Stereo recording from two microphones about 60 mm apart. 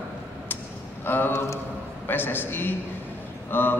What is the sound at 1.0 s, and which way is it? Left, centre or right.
A man's voice, left.